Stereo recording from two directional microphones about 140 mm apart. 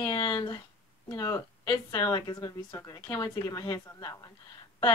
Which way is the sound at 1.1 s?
20° left (ahead or behind).